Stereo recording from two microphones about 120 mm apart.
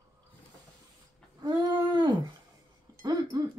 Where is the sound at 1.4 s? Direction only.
35° right (ahead or behind).